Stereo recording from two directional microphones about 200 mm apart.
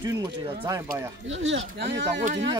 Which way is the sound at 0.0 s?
15° right (ahead or behind).